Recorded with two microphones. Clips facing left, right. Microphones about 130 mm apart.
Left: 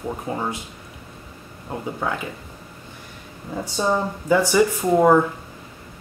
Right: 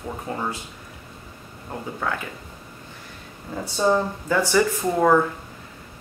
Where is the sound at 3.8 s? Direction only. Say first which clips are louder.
Right 2 dB; 15° left (ahead or behind).